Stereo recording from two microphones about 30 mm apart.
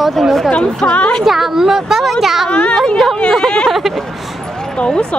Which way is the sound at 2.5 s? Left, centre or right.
Left.